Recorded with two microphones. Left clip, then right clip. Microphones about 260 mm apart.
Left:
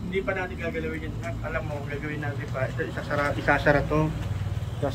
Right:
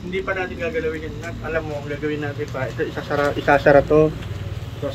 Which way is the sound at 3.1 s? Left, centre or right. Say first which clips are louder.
Right 6 dB; right.